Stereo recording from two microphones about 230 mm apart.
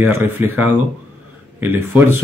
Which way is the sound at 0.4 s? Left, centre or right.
Centre.